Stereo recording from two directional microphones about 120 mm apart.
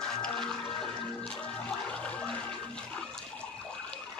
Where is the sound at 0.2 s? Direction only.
5° left (ahead or behind).